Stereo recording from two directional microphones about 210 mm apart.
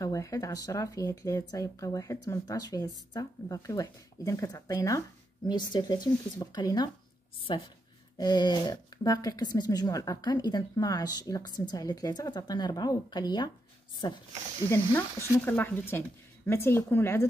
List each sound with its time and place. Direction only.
0.0 s speech: 15° left (ahead or behind)